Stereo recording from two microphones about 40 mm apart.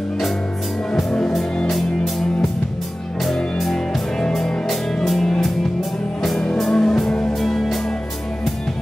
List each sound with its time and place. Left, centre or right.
3.5 s music: centre
6.6 s music: centre
7.3 s music: centre